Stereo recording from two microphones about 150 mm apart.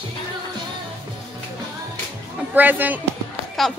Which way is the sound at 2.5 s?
10° right (ahead or behind).